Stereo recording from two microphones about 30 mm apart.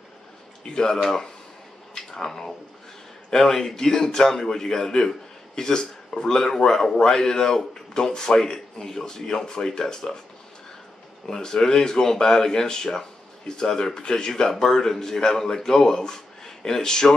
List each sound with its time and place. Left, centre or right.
0.7 s speech: left
2.0 s speech: centre
11.2 s speech: centre